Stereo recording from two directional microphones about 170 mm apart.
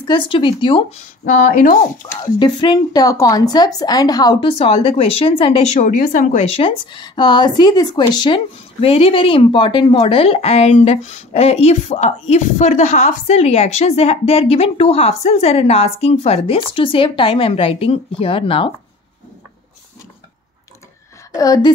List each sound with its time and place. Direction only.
0.0 s speech: 30° left (ahead or behind)
1.2 s speech: 55° left (ahead or behind)
2.3 s a woman's voice: 25° left (ahead or behind)
21.4 s speech: 20° left (ahead or behind)